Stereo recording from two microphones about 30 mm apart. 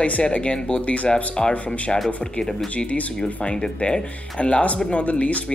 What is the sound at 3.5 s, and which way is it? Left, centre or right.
Speech, left.